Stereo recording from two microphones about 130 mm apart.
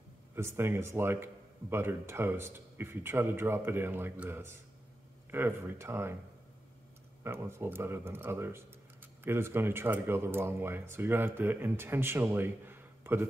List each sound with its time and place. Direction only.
0.4 s speech: 20° right (ahead or behind)
7.2 s speech: 20° right (ahead or behind)